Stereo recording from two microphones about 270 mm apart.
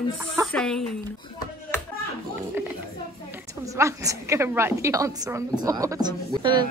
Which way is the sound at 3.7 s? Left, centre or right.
Centre.